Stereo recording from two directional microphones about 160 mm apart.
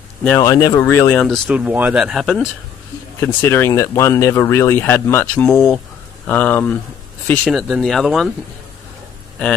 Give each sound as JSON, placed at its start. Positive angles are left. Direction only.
{"t": 0.4, "sound": "speech", "side_deg": 20}
{"t": 1.2, "sound": "speech", "side_deg": 5}
{"t": 1.5, "sound": "speech", "side_deg": -10}
{"t": 3.2, "sound": "speech", "side_deg": 15}
{"t": 7.4, "sound": "speech", "side_deg": 0}